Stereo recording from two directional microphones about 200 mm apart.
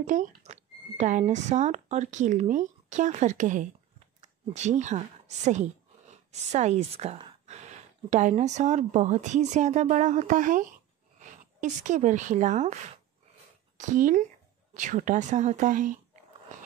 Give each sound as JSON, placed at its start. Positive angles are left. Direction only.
{"t": 0.0, "sound": "a woman's voice", "side_deg": -40}
{"t": 13.7, "sound": "a woman's voice", "side_deg": -40}